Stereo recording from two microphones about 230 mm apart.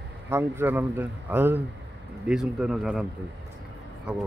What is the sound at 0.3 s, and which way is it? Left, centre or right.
Speech, centre.